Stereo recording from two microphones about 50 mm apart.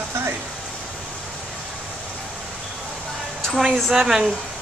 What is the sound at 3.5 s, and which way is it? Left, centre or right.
Speech, centre.